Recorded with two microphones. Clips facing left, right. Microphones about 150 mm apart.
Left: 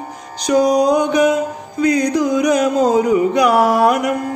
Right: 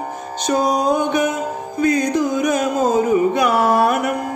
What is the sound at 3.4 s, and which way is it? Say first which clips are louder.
Music: left 3 dB; 15° left (ahead or behind).